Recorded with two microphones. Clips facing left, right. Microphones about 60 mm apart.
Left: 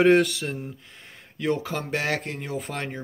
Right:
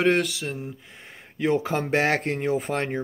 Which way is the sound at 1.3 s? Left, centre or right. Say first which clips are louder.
Right 3 dB; right.